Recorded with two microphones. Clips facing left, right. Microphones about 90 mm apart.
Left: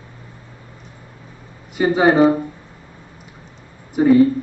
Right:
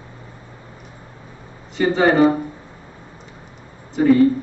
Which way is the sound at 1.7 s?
15° left (ahead or behind).